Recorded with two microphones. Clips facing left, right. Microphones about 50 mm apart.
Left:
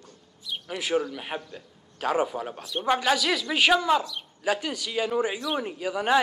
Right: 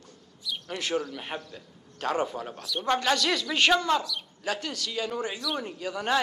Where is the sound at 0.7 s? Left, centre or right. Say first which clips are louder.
Left 4 dB; centre.